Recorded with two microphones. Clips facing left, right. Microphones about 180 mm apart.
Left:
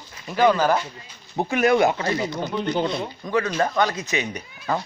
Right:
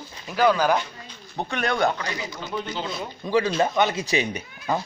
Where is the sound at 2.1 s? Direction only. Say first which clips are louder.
Left 8 dB; 50° left (ahead or behind).